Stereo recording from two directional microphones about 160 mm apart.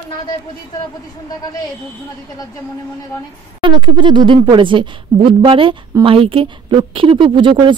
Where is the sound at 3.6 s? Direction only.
30° right (ahead or behind).